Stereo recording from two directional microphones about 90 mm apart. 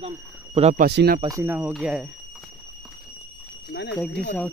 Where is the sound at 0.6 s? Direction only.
90° right.